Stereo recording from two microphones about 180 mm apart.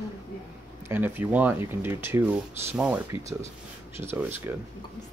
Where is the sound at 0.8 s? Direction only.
10° right (ahead or behind).